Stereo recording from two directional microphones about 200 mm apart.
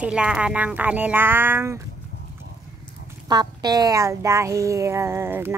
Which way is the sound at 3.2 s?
20° right (ahead or behind).